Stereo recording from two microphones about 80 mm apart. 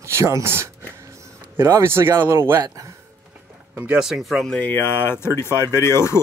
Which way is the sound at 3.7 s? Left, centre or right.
Centre.